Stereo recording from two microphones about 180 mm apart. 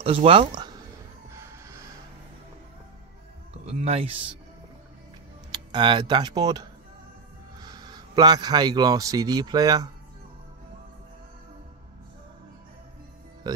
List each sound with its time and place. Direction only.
0.0 s speech: 30° right (ahead or behind)
1.3 s music: 15° right (ahead or behind)
3.6 s speech: 35° right (ahead or behind)
5.5 s speech: 25° right (ahead or behind)